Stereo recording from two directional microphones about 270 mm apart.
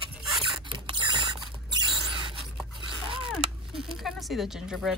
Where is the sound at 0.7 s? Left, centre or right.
Centre.